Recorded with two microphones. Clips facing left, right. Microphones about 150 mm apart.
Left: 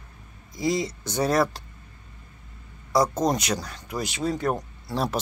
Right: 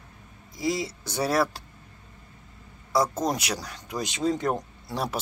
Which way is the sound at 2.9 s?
5° right (ahead or behind).